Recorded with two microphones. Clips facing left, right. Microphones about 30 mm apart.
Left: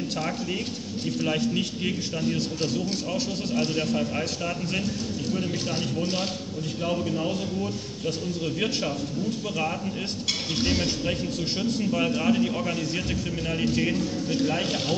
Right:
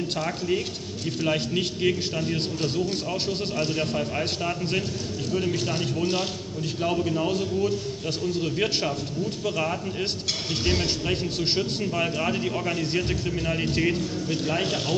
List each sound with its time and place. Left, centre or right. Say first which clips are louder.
1.8 s speech: right 4 dB; centre
2.3 s a man's voice: even; right
3.5 s speech: left 3 dB; centre
6.9 s speech: right 2 dB; centre
10.6 s speech: even; right
12.0 s speech: left 2 dB; centre